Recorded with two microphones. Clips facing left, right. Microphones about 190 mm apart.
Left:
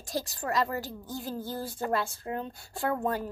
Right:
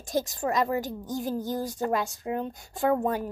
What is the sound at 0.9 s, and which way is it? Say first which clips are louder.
Speech: right 6 dB; 45° right (ahead or behind).